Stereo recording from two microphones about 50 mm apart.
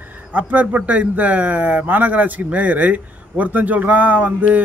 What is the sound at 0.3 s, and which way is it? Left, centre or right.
A man's voice, right.